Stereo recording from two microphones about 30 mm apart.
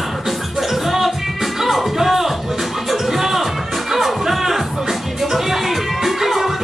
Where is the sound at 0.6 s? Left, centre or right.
Centre.